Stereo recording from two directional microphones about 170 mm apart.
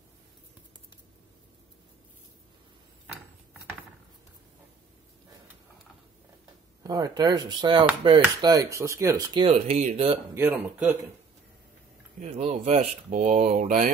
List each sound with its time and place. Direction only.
6.8 s speech: 20° right (ahead or behind)
9.7 s speech: 45° right (ahead or behind)
10.3 s speech: 10° right (ahead or behind)
12.2 s speech: 40° right (ahead or behind)